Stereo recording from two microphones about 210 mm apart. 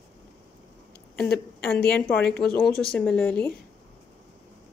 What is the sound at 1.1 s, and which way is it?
Speech, 5° left (ahead or behind).